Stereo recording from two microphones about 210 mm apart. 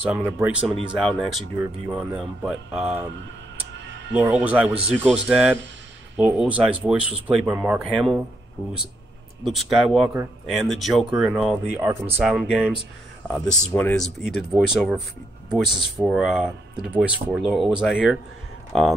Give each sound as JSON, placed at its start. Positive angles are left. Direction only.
{"t": 0.1, "sound": "speech", "side_deg": -10}
{"t": 3.7, "sound": "music", "side_deg": -60}
{"t": 4.1, "sound": "speech", "side_deg": -5}
{"t": 9.4, "sound": "speech", "side_deg": 0}